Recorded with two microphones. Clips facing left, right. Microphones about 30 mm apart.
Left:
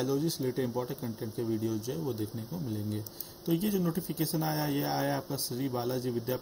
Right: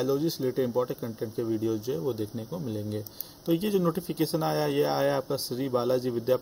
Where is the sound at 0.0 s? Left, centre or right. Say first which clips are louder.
Right 4 dB; centre.